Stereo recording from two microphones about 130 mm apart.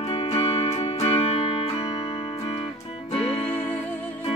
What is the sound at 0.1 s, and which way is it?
Music, 45° left (ahead or behind).